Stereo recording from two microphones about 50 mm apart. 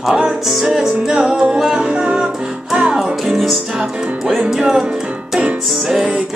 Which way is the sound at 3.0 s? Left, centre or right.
Centre.